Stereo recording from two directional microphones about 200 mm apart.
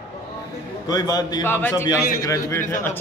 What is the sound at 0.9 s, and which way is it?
A man's voice, 20° left (ahead or behind).